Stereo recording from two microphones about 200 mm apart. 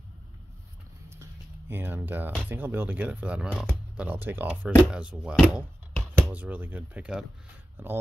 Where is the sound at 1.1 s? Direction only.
10° right (ahead or behind).